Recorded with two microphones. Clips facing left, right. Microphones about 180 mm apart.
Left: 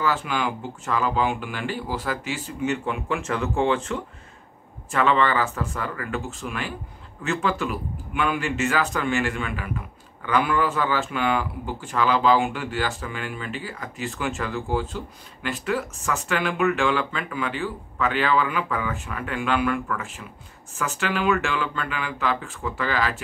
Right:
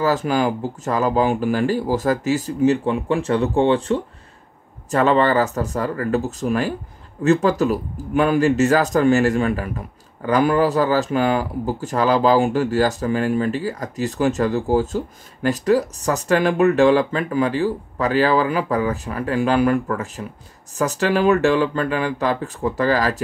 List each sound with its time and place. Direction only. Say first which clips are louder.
0.0 s a man's voice: right 6 dB; 40° right (ahead or behind)